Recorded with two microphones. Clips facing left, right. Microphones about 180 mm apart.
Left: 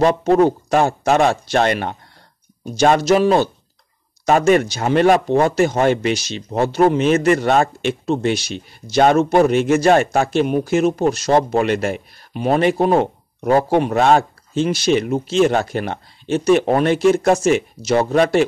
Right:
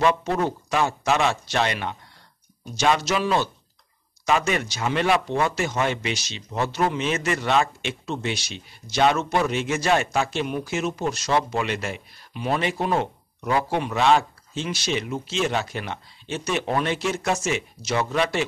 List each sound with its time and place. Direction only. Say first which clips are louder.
0.0 s speech: left 8 dB; 40° left (ahead or behind)